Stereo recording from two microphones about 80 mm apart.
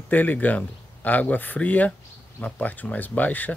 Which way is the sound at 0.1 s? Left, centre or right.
Left.